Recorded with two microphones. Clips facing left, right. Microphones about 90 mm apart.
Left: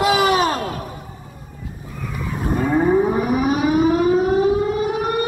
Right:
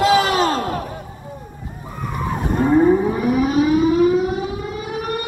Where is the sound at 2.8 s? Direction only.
15° left (ahead or behind).